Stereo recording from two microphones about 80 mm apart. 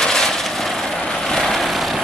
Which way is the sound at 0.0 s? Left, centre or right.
Centre.